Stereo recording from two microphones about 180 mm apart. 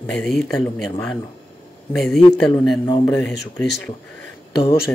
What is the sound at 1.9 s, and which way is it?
Speech, centre (ahead or behind).